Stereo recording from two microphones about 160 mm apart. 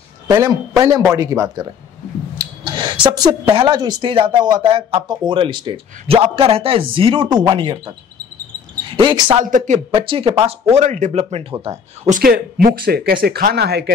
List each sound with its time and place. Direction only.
0.3 s speech: 25° right (ahead or behind)
8.9 s speech: 30° right (ahead or behind)
9.4 s speech: 55° right (ahead or behind)
9.8 s speech: 30° right (ahead or behind)
10.4 s speech: 45° right (ahead or behind)
12.1 s speech: 65° right (ahead or behind); by 13.8 s 90° right